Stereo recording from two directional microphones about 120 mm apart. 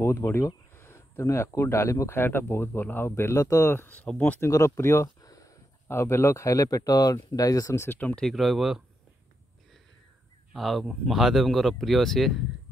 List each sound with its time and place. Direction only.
0.0 s speech: 25° left (ahead or behind)
4.4 s speech: 25° left (ahead or behind); by 8.8 s centre (ahead or behind)
10.5 s speech: centre (ahead or behind)